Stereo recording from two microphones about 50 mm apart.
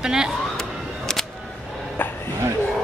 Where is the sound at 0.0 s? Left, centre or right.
Centre.